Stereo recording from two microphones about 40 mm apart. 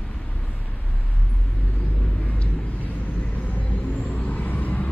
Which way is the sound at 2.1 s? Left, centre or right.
Left.